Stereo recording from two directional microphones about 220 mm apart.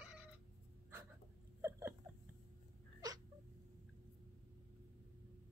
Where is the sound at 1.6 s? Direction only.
10° right (ahead or behind).